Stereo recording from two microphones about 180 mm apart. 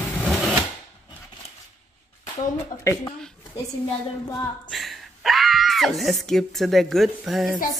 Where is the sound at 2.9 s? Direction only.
15° left (ahead or behind).